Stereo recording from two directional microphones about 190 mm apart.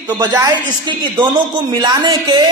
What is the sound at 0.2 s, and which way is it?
Speech, 20° right (ahead or behind).